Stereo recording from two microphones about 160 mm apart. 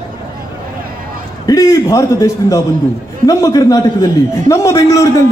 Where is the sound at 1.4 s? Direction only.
20° left (ahead or behind).